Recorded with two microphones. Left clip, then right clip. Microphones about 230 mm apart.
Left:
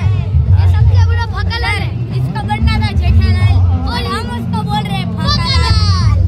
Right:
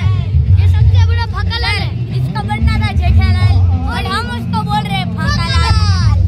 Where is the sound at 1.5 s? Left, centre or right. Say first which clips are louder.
Even; centre.